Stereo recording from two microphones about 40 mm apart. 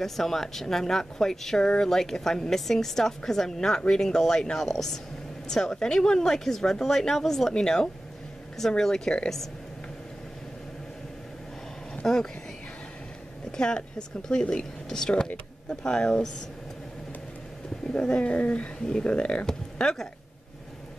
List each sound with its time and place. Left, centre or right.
0.0 s a woman's voice: centre
12.0 s speech: centre
13.6 s a woman's voice: left
17.9 s speech: left
18.3 s speech: left
19.4 s speech: centre